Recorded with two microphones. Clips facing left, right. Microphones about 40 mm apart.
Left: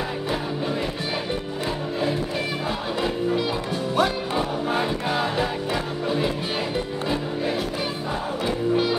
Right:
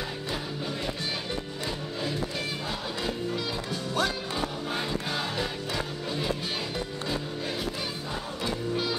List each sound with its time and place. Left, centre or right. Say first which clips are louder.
3.9 s music: left 7 dB; left
8.5 s music: left 8 dB; left